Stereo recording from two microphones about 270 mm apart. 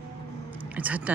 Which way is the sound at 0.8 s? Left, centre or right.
Centre.